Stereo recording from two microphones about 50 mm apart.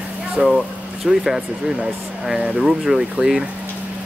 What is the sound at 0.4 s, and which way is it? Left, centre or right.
Speech, centre.